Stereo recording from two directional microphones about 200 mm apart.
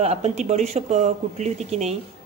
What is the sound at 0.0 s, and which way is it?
A woman's voice, 30° right (ahead or behind).